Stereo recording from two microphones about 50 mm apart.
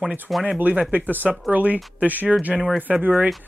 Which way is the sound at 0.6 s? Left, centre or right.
Right.